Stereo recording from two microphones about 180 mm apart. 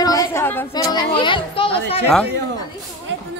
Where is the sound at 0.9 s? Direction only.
25° left (ahead or behind).